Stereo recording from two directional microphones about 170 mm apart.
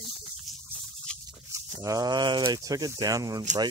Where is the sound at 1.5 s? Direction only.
20° right (ahead or behind).